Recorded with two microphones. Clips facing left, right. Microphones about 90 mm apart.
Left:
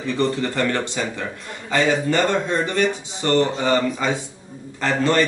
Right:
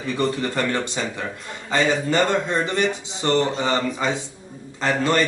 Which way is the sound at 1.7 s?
20° right (ahead or behind).